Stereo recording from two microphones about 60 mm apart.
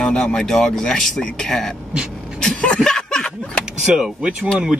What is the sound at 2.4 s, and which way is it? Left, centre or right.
Speech, centre.